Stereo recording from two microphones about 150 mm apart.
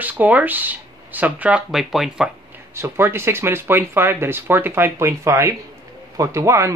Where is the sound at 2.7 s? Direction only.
15° right (ahead or behind).